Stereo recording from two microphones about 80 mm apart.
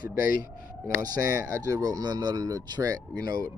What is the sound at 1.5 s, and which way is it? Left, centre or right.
Speech, right.